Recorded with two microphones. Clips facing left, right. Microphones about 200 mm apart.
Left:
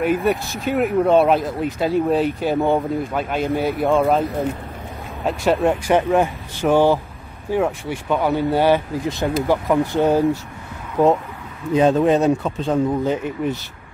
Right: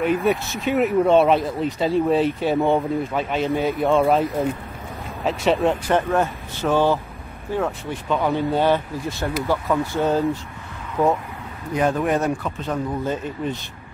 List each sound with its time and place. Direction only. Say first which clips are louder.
0.0 s speech: left 1 dB; centre (ahead or behind)
5.2 s speech: left 1 dB; centre (ahead or behind)
5.9 s speech: left 3 dB; 15° left (ahead or behind)
13.0 s speech: left 4 dB; 15° left (ahead or behind)